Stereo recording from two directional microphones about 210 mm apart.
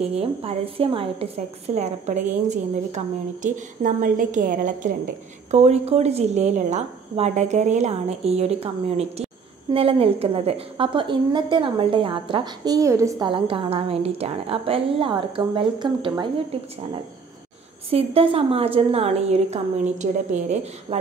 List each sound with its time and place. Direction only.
0.0 s a woman's voice: 30° right (ahead or behind)
17.8 s a woman's voice: 25° right (ahead or behind)